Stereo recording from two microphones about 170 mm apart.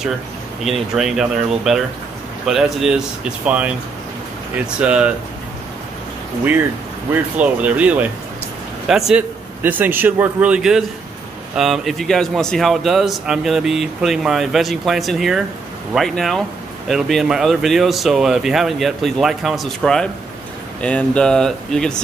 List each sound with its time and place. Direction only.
0.7 s a man's voice: centre (ahead or behind)
7.3 s a man's voice: 10° right (ahead or behind)